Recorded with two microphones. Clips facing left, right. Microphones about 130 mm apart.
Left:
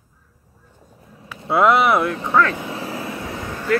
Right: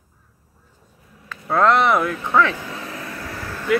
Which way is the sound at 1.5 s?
10° left (ahead or behind).